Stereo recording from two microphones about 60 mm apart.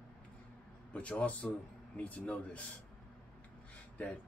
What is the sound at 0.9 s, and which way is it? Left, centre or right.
Speech, left.